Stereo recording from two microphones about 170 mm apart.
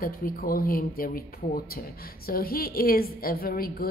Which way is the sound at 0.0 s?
55° left (ahead or behind).